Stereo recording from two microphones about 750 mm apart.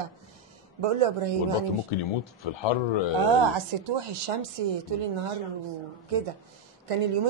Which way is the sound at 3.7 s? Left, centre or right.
Right.